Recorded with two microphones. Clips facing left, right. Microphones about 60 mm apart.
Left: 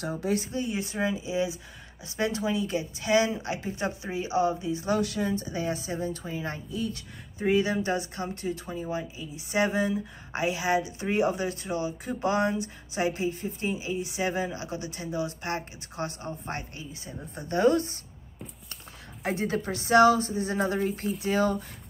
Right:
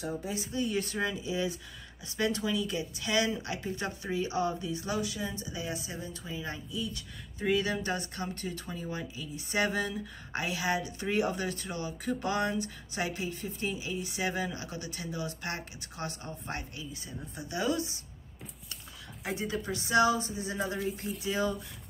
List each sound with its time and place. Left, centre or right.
0.0 s speech: left
0.5 s speech: left
0.7 s speech: centre
4.8 s speech: left
7.3 s speech: centre; by 18.0 s left
19.2 s speech: left